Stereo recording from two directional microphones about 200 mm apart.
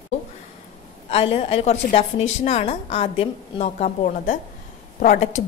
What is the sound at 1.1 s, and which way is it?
A woman's voice, 30° left (ahead or behind).